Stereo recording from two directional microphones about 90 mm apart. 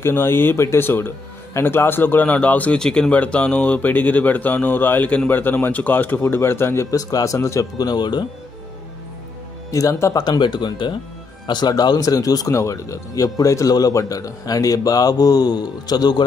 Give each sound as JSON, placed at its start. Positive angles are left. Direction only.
{"t": 0.0, "sound": "a man's voice", "side_deg": 25}
{"t": 7.7, "sound": "speech", "side_deg": 50}
{"t": 9.7, "sound": "a man's voice", "side_deg": 40}
{"t": 10.2, "sound": "speech", "side_deg": 55}